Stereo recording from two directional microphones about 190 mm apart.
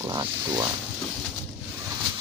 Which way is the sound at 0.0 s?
20° right (ahead or behind).